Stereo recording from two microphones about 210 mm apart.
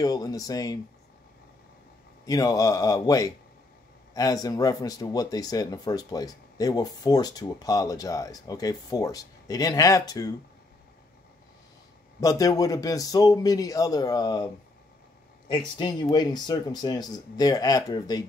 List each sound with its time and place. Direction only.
0.0 s speech: 15° left (ahead or behind)
2.2 s speech: 15° left (ahead or behind)
12.2 s speech: 15° left (ahead or behind)